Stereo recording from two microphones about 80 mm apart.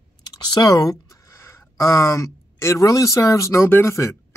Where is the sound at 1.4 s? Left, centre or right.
Left.